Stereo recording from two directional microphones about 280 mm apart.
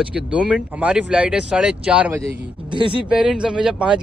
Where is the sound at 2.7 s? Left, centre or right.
Centre.